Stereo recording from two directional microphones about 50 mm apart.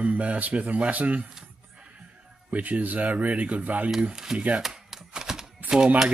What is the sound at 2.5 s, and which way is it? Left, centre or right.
Speech, right.